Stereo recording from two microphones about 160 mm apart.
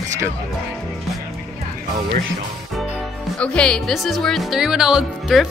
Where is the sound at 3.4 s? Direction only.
5° left (ahead or behind).